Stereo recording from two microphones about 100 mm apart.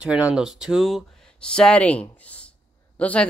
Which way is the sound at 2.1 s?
15° left (ahead or behind).